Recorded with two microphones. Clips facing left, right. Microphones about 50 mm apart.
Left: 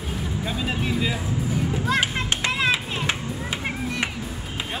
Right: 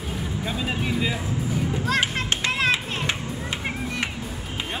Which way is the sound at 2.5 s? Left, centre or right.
Centre.